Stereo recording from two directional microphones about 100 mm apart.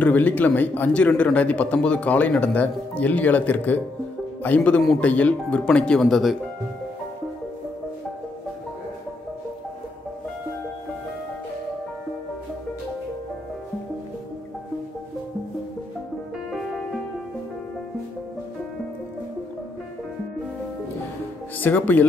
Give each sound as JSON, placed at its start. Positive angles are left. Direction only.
{"t": 0.0, "sound": "speech", "side_deg": 15}
{"t": 21.5, "sound": "speech", "side_deg": 20}